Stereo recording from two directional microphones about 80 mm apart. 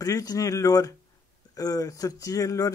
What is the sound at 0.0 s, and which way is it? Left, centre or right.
Speech, left.